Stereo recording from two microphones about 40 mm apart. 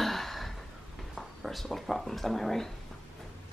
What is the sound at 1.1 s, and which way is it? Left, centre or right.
Speech, centre.